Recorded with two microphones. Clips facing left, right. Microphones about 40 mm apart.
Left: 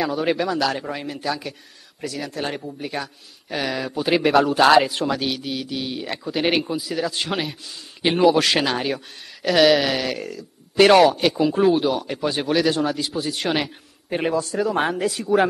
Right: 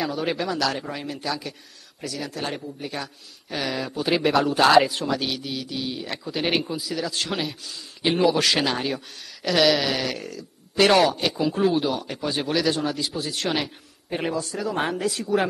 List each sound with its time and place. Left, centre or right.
0.0 s a man's voice: centre
4.9 s a man's voice: centre